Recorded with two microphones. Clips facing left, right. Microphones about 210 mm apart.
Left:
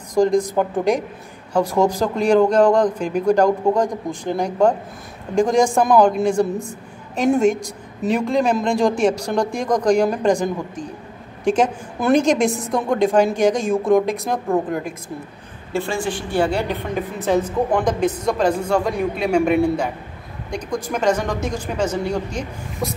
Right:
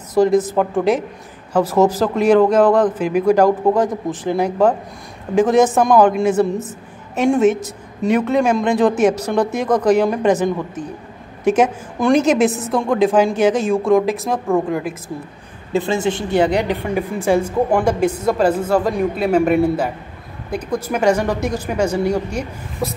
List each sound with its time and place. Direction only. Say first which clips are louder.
0.1 s a man's voice: right 2 dB; 5° right (ahead or behind)
15.7 s a woman's voice: right 4 dB; 20° right (ahead or behind)